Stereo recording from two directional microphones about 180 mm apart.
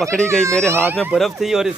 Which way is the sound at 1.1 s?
Centre (ahead or behind).